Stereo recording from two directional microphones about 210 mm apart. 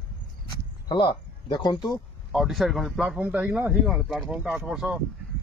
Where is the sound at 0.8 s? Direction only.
20° left (ahead or behind).